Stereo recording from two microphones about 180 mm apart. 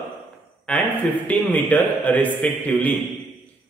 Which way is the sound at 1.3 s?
10° left (ahead or behind).